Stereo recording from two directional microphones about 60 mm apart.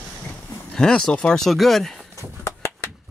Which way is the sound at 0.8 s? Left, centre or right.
Centre.